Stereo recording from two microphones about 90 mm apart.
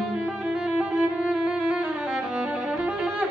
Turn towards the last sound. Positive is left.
turn(degrees=-10)  # may be behind; listen again after turning